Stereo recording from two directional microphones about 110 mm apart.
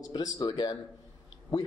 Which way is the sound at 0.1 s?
35° left (ahead or behind).